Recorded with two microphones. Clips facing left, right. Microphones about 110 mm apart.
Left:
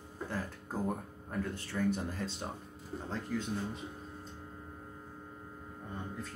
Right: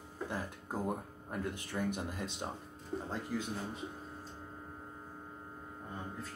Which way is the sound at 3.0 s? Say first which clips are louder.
Left 4 dB; 5° right (ahead or behind).